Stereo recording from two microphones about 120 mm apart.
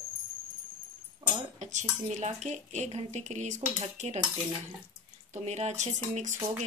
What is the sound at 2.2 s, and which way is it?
Speech, 75° right (ahead or behind).